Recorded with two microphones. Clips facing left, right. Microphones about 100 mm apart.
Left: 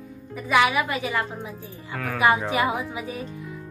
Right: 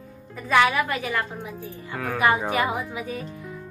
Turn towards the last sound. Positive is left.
turn(degrees=20)  # may be behind; listen again after turning